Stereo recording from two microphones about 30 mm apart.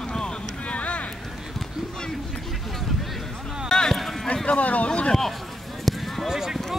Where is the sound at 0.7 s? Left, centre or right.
Left.